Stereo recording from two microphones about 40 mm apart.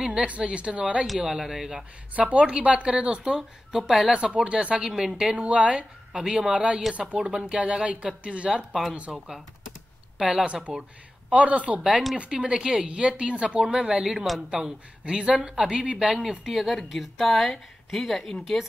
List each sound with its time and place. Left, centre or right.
0.0 s speech: right
1.2 s speech: centre
2.1 s speech: right; by 4.1 s centre
4.1 s speech: right
6.1 s speech: centre
10.1 s speech: right
14.1 s speech: centre
14.5 s speech: centre
16.9 s speech: centre